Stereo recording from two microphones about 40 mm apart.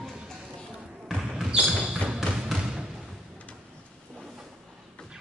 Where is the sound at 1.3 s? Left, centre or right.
Centre.